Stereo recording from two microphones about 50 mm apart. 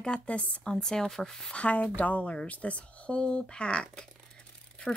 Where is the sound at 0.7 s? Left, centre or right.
Centre.